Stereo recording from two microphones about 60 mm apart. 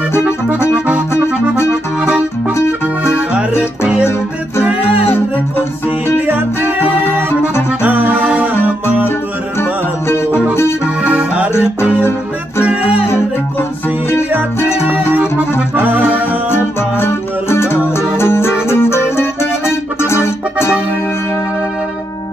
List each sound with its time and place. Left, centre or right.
2.5 s music: left
7.8 s music: right
9.6 s music: left
11.0 s music: centre
15.7 s accordion: right
16.4 s music: left